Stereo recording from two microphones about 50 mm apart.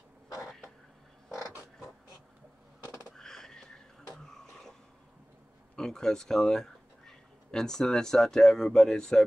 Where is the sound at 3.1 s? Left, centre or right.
Centre.